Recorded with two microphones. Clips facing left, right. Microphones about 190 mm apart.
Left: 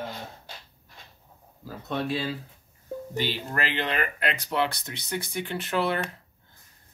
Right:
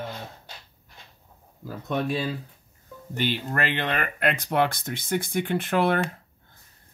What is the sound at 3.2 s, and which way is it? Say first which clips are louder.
Speech: right 3 dB; 50° right (ahead or behind).